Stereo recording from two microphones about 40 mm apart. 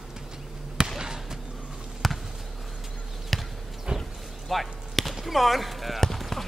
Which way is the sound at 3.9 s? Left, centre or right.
Right.